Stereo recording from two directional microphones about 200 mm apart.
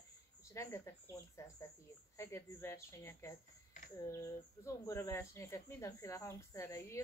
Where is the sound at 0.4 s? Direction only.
15° left (ahead or behind).